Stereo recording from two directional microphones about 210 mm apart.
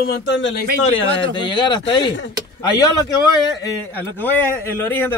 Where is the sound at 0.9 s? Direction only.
20° left (ahead or behind).